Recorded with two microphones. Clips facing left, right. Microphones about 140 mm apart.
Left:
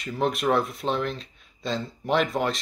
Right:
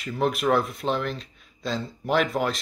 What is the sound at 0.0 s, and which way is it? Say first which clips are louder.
Speech: right 1 dB; centre (ahead or behind).